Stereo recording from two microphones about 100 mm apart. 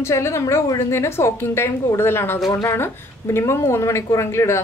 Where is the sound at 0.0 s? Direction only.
30° left (ahead or behind).